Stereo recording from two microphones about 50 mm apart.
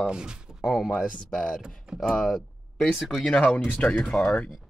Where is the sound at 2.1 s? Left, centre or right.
Centre.